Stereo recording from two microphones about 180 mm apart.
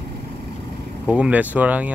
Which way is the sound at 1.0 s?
5° right (ahead or behind).